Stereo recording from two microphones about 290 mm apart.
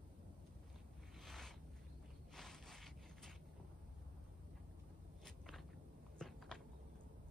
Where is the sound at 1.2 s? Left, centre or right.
Centre.